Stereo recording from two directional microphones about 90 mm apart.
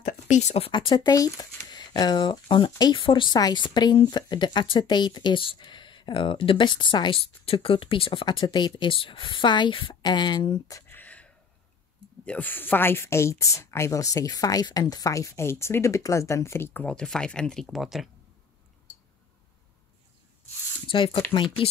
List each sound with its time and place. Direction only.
0.6 s speech: 60° left (ahead or behind)
10.9 s a sound: 20° left (ahead or behind)
12.3 s a woman's voice: 20° left (ahead or behind)
16.8 s speech: 10° left (ahead or behind)
20.8 s speech: 75° left (ahead or behind)